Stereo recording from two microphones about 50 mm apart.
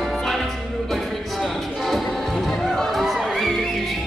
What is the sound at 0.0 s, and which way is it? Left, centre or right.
Music, centre.